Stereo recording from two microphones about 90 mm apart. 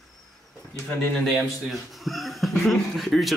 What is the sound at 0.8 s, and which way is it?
Speech, 5° left (ahead or behind).